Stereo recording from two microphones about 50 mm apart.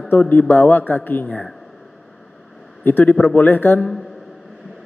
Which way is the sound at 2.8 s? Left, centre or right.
Left.